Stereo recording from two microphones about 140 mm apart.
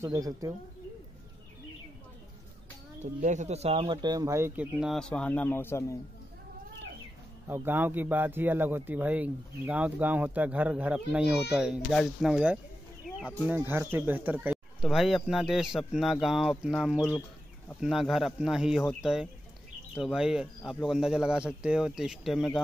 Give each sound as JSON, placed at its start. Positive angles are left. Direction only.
{"t": 0.0, "sound": "speech", "side_deg": -20}
{"t": 3.0, "sound": "speech", "side_deg": -60}
{"t": 4.6, "sound": "speech", "side_deg": -5}
{"t": 4.9, "sound": "speech", "side_deg": 5}
{"t": 7.4, "sound": "a man's voice", "side_deg": -15}
{"t": 13.0, "sound": "a sound", "side_deg": 0}
{"t": 13.5, "sound": "a man's voice", "side_deg": -15}